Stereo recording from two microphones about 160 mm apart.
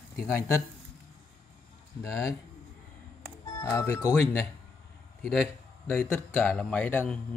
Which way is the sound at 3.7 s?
15° left (ahead or behind).